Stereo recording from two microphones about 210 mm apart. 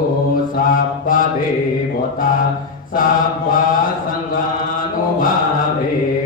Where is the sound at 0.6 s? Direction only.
40° left (ahead or behind).